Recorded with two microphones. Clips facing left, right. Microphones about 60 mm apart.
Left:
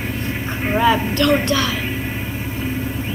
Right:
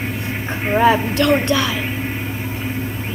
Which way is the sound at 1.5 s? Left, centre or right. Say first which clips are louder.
Right 1 dB; centre.